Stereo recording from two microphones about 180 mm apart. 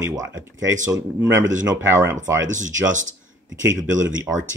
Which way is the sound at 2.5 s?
45° right (ahead or behind).